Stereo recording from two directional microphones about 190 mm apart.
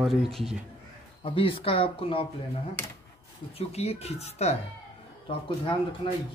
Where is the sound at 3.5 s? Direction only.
35° left (ahead or behind).